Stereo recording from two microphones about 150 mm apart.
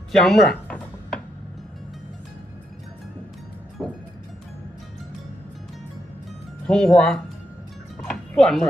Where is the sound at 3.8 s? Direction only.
5° left (ahead or behind).